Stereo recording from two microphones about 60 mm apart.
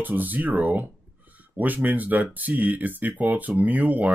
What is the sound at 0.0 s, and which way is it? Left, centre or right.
Speech, right.